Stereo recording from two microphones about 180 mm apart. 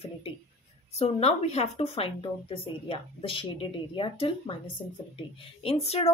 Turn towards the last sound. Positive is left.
turn(degrees=35)  # may be behind; listen again after turning